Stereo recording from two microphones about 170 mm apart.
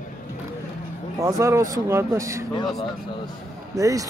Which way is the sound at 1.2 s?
20° right (ahead or behind).